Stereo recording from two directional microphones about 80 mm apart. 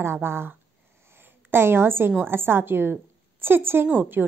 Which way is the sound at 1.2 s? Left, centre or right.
Right.